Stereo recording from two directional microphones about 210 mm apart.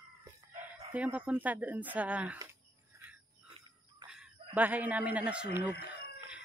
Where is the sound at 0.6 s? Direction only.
5° right (ahead or behind).